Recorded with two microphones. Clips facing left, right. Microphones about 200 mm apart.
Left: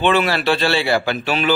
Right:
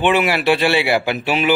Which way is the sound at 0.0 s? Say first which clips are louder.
Right 1 dB; 15° right (ahead or behind).